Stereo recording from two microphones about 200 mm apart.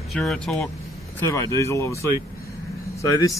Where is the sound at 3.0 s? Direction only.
15° left (ahead or behind).